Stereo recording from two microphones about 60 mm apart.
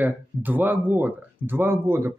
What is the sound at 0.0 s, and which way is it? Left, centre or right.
Speech, right.